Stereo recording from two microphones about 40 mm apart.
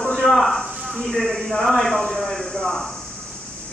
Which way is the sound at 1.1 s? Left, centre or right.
Centre.